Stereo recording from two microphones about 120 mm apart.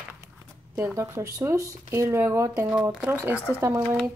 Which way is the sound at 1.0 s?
25° right (ahead or behind).